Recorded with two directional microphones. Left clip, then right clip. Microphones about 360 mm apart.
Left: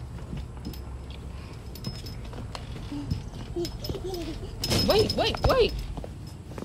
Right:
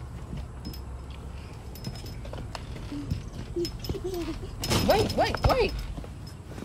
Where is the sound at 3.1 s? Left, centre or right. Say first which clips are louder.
Left 1 dB; centre.